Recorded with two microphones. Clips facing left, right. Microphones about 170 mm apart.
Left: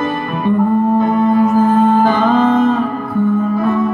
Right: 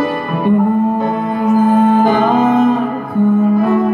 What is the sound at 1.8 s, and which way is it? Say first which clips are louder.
Music: right 1 dB; 15° right (ahead or behind).